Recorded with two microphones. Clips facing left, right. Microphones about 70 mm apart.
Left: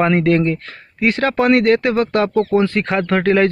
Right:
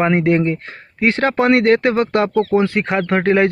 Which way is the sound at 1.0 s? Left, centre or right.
Right.